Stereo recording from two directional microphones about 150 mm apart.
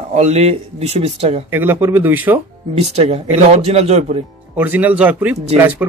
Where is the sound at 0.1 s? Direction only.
45° right (ahead or behind).